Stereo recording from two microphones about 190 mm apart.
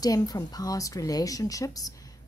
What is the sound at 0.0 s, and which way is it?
A woman's voice, 20° left (ahead or behind).